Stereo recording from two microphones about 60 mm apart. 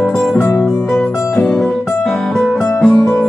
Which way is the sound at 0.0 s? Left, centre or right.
Centre.